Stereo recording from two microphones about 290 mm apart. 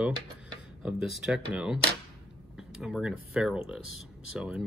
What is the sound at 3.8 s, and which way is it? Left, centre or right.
Speech, left.